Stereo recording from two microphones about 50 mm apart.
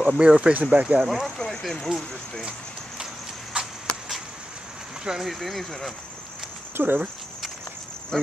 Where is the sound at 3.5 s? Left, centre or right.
Centre.